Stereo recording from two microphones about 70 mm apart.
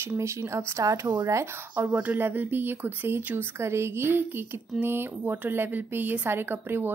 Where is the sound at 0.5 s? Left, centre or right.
Right.